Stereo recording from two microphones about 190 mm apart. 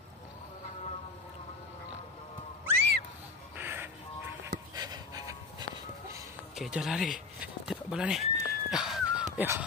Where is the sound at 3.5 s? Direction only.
10° right (ahead or behind).